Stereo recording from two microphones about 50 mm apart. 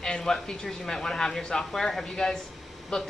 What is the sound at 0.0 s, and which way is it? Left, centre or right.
Speech, centre.